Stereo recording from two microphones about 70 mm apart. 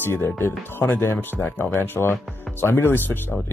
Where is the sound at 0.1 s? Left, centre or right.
Left.